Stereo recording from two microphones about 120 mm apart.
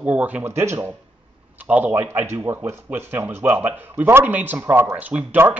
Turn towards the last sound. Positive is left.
turn(degrees=-15)  # may be behind; listen again after turning